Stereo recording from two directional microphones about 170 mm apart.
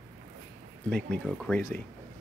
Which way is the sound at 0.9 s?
5° left (ahead or behind).